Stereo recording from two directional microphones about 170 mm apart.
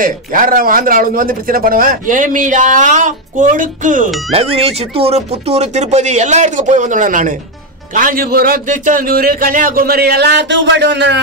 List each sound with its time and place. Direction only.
0.0 s speech: 55° right (ahead or behind)
4.3 s speech: 35° right (ahead or behind); by 11.1 s 90° right